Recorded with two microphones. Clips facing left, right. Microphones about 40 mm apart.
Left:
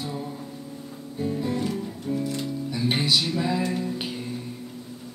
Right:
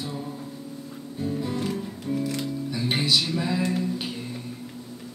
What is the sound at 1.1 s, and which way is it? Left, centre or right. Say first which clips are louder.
Music: left 2 dB; centre.